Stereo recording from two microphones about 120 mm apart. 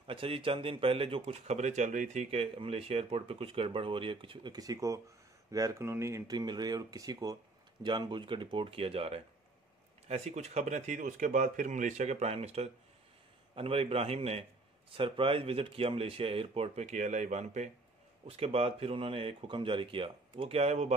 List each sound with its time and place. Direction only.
0.0 s speech: 50° right (ahead or behind); by 7.3 s 30° right (ahead or behind)
7.8 s speech: 40° right (ahead or behind)
10.0 s speech: 65° right (ahead or behind)
15.0 s speech: 45° right (ahead or behind); by 17.6 s 75° right (ahead or behind)
18.2 s speech: 55° right (ahead or behind)